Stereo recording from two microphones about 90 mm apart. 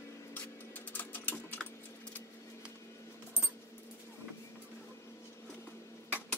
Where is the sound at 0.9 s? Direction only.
20° left (ahead or behind).